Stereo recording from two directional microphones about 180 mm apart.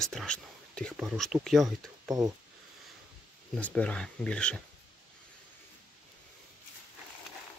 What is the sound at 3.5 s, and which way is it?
Speech, 5° left (ahead or behind).